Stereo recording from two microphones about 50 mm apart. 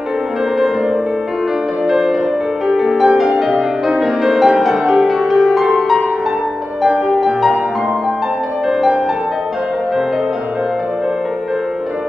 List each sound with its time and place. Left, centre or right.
1.9 s music: centre
8.6 s music: centre